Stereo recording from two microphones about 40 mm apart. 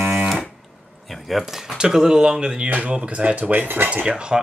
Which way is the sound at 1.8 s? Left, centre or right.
Centre.